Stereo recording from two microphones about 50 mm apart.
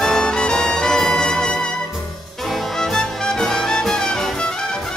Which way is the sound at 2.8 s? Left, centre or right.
Centre.